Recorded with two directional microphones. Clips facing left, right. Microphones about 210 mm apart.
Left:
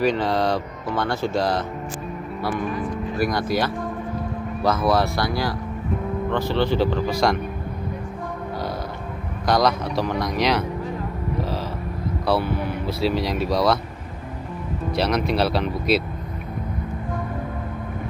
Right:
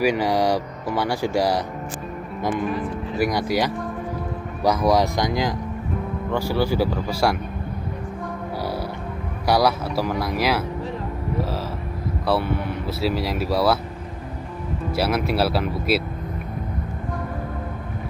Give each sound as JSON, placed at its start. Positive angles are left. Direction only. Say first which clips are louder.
{"t": 0.0, "sound": "speech", "louder": "right 1 dB", "side_deg": -10}
{"t": 3.2, "sound": "speech", "louder": "right 1 dB", "side_deg": -15}
{"t": 9.5, "sound": "speech", "louder": "even", "side_deg": -10}
{"t": 12.3, "sound": "speech", "louder": "even", "side_deg": 0}
{"t": 14.9, "sound": "speech", "louder": "even", "side_deg": -5}